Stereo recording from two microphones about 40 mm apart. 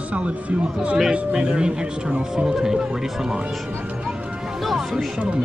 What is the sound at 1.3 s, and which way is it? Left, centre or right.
Speech, right.